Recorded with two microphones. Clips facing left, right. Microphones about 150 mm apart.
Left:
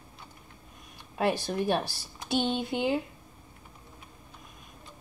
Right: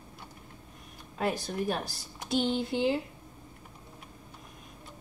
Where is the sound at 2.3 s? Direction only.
20° left (ahead or behind).